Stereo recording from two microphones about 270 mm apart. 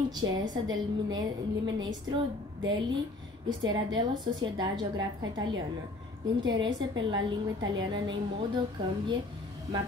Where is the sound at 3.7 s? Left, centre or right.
Centre.